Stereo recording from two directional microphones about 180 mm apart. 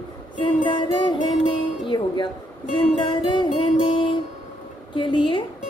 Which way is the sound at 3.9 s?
30° left (ahead or behind).